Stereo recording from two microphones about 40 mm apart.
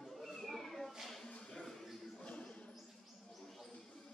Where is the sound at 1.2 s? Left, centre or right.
Left.